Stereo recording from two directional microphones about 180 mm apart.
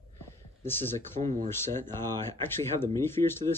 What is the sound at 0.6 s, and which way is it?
Speech, 10° left (ahead or behind).